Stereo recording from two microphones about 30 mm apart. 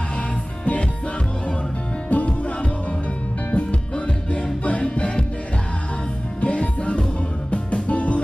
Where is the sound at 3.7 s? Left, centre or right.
Left.